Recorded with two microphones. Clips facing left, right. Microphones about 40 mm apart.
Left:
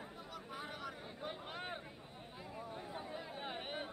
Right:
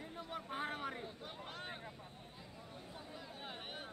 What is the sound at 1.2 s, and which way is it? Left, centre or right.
Vehicle, centre.